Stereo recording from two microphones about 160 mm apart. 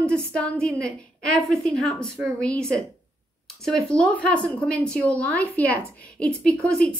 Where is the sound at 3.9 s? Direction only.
5° left (ahead or behind).